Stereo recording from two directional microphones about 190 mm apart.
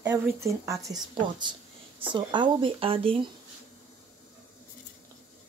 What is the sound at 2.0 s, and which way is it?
Cutlery, 25° right (ahead or behind).